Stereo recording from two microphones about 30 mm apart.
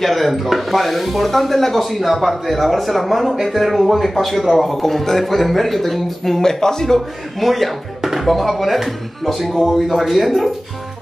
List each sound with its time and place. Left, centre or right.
0.0 s a man's voice: centre
7.3 s speech: centre